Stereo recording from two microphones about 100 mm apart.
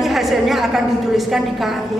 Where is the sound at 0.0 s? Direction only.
Centre (ahead or behind).